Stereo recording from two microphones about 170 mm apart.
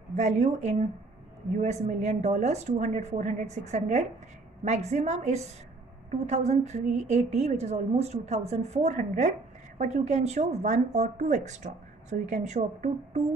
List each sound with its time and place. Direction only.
0.1 s a woman's voice: 45° right (ahead or behind)